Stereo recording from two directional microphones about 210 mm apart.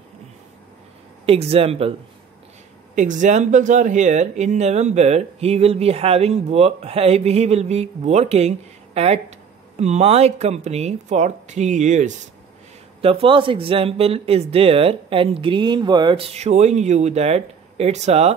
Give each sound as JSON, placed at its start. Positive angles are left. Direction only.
{"t": 1.2, "sound": "speech", "side_deg": -30}
{"t": 3.0, "sound": "speech", "side_deg": -35}